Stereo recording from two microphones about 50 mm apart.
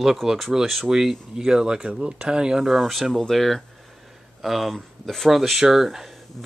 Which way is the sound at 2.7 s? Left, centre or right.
Centre.